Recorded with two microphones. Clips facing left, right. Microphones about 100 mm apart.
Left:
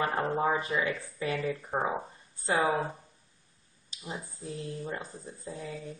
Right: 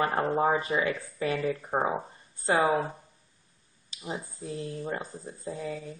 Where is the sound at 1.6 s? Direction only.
25° right (ahead or behind).